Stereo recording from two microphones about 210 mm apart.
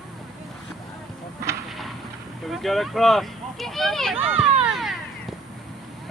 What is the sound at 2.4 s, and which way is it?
Speech, centre (ahead or behind).